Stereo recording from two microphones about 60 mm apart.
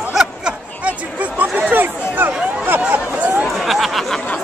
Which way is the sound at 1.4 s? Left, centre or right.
Right.